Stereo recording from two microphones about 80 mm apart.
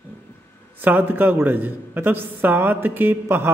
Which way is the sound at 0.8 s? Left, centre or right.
Right.